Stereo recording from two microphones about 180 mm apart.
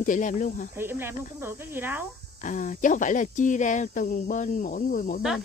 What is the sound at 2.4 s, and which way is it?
Speech, 45° left (ahead or behind).